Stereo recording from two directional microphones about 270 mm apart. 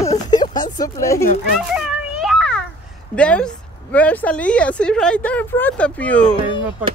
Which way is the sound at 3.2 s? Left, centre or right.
Centre.